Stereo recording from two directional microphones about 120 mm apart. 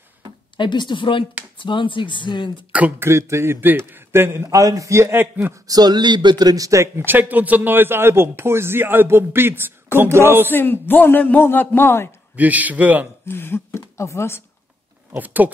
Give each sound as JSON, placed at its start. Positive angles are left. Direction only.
{"t": 0.6, "sound": "speech", "side_deg": 40}
{"t": 2.7, "sound": "a man's voice", "side_deg": -15}
{"t": 7.1, "sound": "a man's voice", "side_deg": -15}
{"t": 10.5, "sound": "speech", "side_deg": 15}
{"t": 12.4, "sound": "a man's voice", "side_deg": -15}
{"t": 13.2, "sound": "speech", "side_deg": 20}
{"t": 15.1, "sound": "a man's voice", "side_deg": -15}